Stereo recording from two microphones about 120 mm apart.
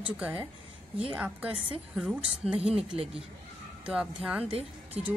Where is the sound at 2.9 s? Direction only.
55° right (ahead or behind).